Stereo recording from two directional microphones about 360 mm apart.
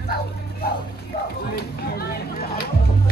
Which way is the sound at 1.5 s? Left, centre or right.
Left.